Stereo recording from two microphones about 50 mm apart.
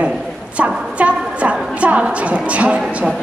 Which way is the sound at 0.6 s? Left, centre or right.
Right.